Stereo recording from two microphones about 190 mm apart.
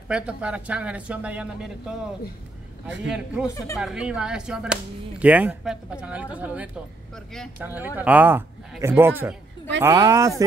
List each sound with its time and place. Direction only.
0.1 s speech: 5° right (ahead or behind)
3.4 s speech: 15° left (ahead or behind)
3.7 s whip: 5° right (ahead or behind)
5.2 s speech: 10° right (ahead or behind)